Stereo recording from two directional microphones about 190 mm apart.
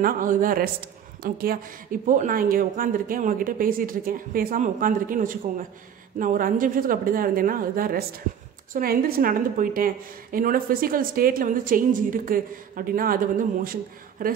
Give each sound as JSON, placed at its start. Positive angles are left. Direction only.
{"t": 0.0, "sound": "a woman's voice", "side_deg": -45}